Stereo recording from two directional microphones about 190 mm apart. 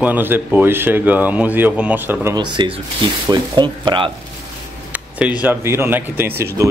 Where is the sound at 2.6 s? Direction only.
25° right (ahead or behind).